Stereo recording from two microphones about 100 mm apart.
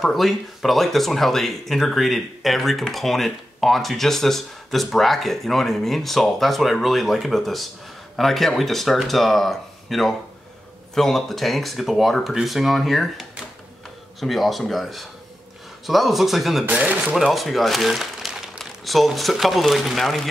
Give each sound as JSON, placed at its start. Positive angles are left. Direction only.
{"t": 0.0, "sound": "speech", "side_deg": 0}
{"t": 16.6, "sound": "speech", "side_deg": -15}
{"t": 17.1, "sound": "speech", "side_deg": 0}